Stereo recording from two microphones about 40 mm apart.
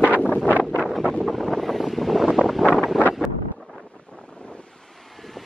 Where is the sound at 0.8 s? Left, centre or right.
Centre.